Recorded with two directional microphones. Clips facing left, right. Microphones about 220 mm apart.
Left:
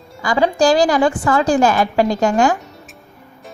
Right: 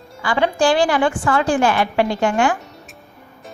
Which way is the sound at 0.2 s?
40° left (ahead or behind).